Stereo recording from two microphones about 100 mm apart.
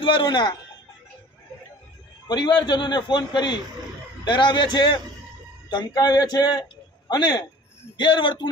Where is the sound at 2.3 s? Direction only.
50° left (ahead or behind).